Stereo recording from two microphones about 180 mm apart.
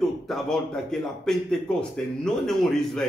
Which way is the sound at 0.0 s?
Centre (ahead or behind).